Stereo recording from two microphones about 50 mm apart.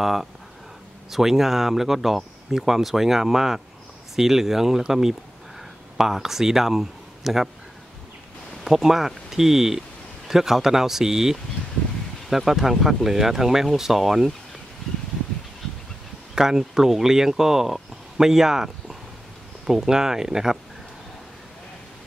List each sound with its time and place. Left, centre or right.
0.0 s speech: centre
8.6 s speech: centre
16.3 s speech: centre